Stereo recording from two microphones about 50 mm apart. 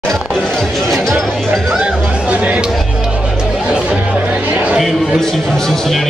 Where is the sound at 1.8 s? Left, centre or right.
Right.